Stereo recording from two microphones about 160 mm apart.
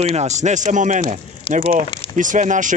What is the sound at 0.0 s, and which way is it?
Speech, 45° right (ahead or behind).